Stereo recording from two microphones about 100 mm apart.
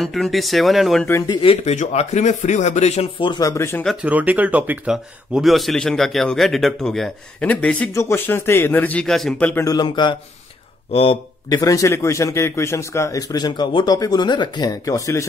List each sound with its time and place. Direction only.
0.0 s a man's voice: centre (ahead or behind)
1.4 s speech: 80° left
3.2 s a man's voice: 50° left (ahead or behind)
3.4 s speech: 25° left (ahead or behind)
4.0 s speech: 15° right (ahead or behind)
4.9 s a man's voice: centre (ahead or behind)
7.9 s speech: 25° left (ahead or behind); by 9.3 s 5° left (ahead or behind)
9.4 s speech: 15° left (ahead or behind)
9.7 s a man's voice: 45° left (ahead or behind)
10.9 s speech: 70° left (ahead or behind)
11.4 s a man's voice: 35° left (ahead or behind)